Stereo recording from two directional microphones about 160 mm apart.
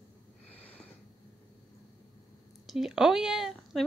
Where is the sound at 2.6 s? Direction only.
Centre (ahead or behind).